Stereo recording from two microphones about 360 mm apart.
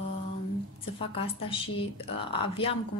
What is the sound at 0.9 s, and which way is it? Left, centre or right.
Speech, centre.